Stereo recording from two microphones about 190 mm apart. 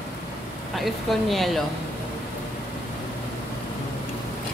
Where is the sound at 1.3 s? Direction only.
Centre (ahead or behind).